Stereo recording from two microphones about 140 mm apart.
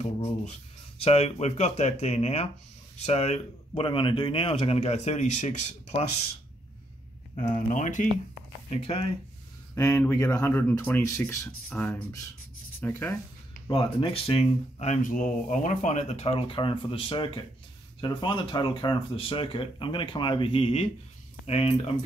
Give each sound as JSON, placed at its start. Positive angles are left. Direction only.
{"t": 0.0, "sound": "speech", "side_deg": 45}
{"t": 7.5, "sound": "speech", "side_deg": 65}
{"t": 8.6, "sound": "speech", "side_deg": 45}
{"t": 9.8, "sound": "speech", "side_deg": 20}
{"t": 13.7, "sound": "speech", "side_deg": 40}